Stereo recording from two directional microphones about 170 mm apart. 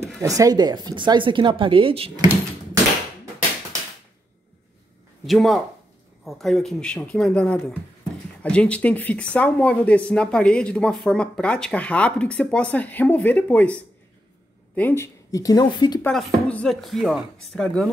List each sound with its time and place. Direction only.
0.2 s speech: 20° right (ahead or behind)
5.2 s speech: centre (ahead or behind)
14.8 s speech: 15° left (ahead or behind)
16.0 s speech: 5° left (ahead or behind)